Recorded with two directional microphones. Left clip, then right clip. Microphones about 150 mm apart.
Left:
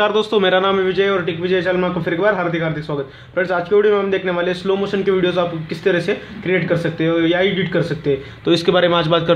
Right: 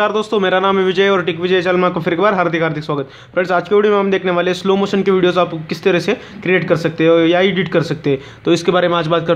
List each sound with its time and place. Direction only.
0.0 s a man's voice: 15° right (ahead or behind)
0.7 s a man's voice: 35° right (ahead or behind)
8.5 s a man's voice: 20° right (ahead or behind)